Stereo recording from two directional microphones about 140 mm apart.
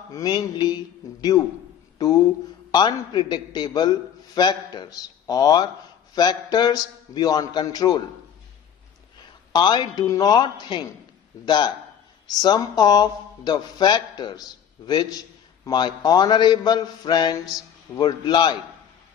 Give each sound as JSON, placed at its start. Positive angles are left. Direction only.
{"t": 0.1, "sound": "speech", "side_deg": 30}
{"t": 2.0, "sound": "a man's voice", "side_deg": 25}
{"t": 9.5, "sound": "a man's voice", "side_deg": 30}